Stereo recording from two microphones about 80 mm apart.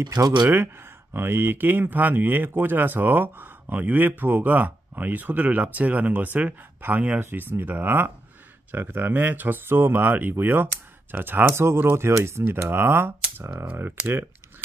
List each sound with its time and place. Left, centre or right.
0.0 s speech: right
1.1 s speech: right